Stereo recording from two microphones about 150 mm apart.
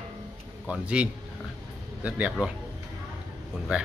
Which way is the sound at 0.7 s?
5° right (ahead or behind).